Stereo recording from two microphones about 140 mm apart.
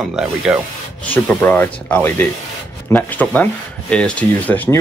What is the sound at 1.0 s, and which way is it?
Speech, 15° left (ahead or behind).